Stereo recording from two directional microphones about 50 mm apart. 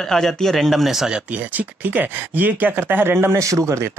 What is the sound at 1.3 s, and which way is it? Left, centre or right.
Speech, right.